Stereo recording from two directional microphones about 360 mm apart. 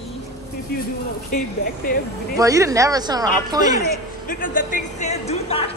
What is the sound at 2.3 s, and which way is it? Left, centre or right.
Speech, centre.